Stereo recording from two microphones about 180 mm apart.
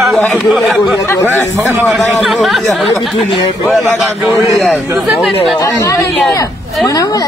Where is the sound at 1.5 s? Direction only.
10° right (ahead or behind).